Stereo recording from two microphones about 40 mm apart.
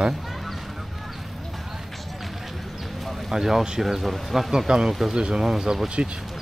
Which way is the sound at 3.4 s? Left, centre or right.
Centre.